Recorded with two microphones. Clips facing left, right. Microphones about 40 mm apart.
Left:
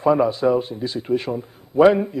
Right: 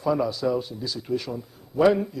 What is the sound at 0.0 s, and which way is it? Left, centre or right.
A man's voice, left.